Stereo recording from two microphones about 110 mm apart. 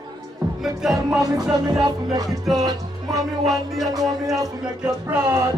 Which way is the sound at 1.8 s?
45° right (ahead or behind).